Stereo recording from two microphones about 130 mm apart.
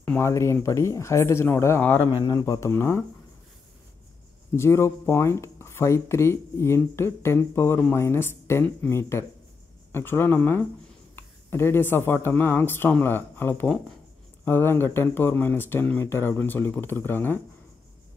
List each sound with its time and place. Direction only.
0.0 s speech: 15° left (ahead or behind)
4.6 s speech: 20° left (ahead or behind)